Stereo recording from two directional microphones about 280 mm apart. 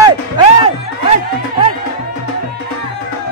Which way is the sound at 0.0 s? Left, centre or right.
Centre.